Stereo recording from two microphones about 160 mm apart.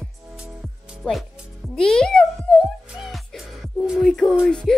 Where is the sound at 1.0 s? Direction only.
Centre (ahead or behind).